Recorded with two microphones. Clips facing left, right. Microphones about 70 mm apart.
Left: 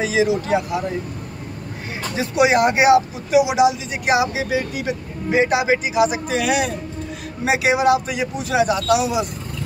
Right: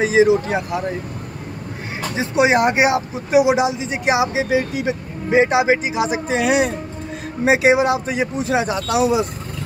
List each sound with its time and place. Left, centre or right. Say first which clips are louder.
0.0 s speech: right 5 dB; right
2.1 s speech: even; right